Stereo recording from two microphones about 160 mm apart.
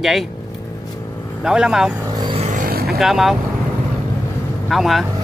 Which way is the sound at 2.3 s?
50° right (ahead or behind).